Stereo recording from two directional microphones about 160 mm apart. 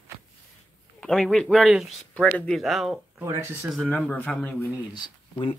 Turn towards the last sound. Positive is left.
turn(degrees=30)  # may be behind; listen again after turning